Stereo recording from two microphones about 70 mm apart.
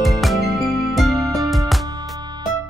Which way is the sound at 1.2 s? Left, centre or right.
Right.